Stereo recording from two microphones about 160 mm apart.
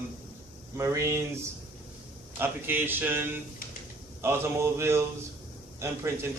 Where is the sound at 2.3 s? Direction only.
15° right (ahead or behind).